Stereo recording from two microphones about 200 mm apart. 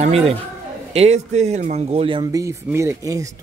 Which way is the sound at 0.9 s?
35° right (ahead or behind).